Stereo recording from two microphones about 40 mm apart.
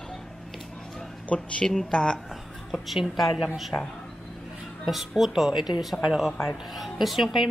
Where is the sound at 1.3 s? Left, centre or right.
Left.